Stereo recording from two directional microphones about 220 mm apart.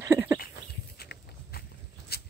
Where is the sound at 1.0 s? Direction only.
45° left (ahead or behind).